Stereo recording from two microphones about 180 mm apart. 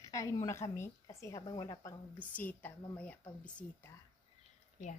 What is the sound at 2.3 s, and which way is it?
A woman's voice, 10° left (ahead or behind).